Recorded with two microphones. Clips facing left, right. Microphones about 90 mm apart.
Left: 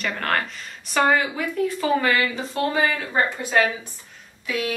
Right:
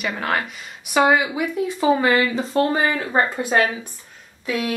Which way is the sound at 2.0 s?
30° right (ahead or behind).